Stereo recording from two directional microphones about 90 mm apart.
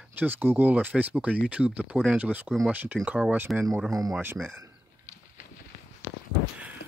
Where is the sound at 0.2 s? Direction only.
20° right (ahead or behind).